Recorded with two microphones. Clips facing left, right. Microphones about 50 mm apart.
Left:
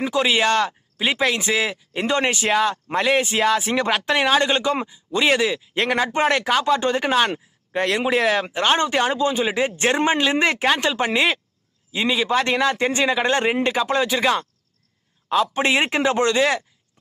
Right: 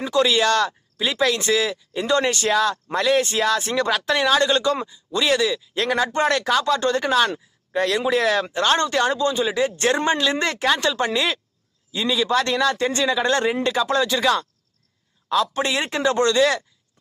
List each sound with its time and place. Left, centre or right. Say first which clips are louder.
0.0 s speech: even; left
3.3 s speech: left 2 dB; centre